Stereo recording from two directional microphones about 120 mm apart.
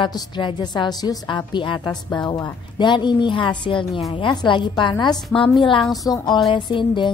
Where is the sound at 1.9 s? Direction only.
5° left (ahead or behind).